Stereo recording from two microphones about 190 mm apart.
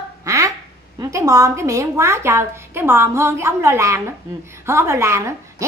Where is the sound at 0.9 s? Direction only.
15° right (ahead or behind).